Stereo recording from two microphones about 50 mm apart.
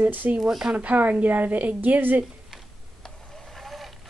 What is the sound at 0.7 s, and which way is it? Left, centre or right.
A woman's voice, right.